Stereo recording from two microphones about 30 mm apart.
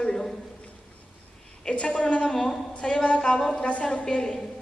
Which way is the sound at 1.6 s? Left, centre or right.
Left.